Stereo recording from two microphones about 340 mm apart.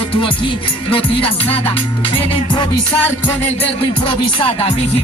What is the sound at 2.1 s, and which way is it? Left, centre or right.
Music, centre.